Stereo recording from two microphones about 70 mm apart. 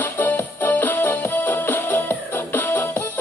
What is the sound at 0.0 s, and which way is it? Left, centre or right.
Music, left.